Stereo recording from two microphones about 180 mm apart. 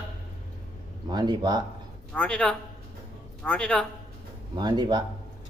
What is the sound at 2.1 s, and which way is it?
A man's voice, 5° left (ahead or behind).